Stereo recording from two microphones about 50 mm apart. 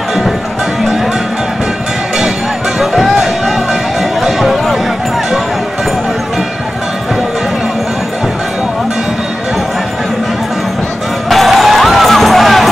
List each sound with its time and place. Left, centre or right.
2.8 s music: centre
11.2 s music: centre